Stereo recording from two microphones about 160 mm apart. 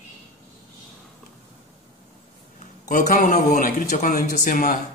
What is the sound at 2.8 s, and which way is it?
Speech, 50° left (ahead or behind).